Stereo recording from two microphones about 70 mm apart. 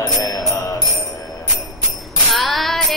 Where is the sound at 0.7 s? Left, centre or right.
Left.